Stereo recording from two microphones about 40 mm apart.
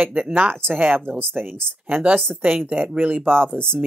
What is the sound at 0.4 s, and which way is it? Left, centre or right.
Speech, right.